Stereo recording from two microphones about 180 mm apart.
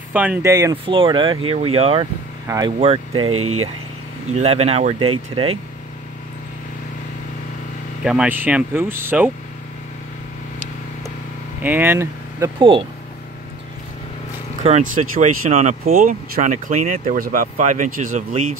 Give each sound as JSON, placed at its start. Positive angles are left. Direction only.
{"t": 0.1, "sound": "speech", "side_deg": -10}
{"t": 2.4, "sound": "speech", "side_deg": -20}
{"t": 4.3, "sound": "speech", "side_deg": -35}
{"t": 8.0, "sound": "speech", "side_deg": -5}
{"t": 11.6, "sound": "speech", "side_deg": -10}
{"t": 12.5, "sound": "speech", "side_deg": -30}
{"t": 14.6, "sound": "speech", "side_deg": -40}
{"t": 15.8, "sound": "speech", "side_deg": -50}